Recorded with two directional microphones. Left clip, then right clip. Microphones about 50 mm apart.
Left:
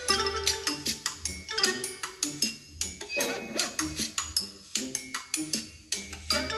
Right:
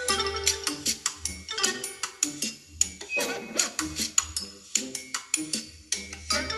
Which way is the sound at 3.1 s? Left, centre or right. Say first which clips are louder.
Right 2 dB; right.